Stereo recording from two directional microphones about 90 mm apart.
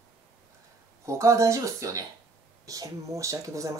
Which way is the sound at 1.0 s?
35° right (ahead or behind).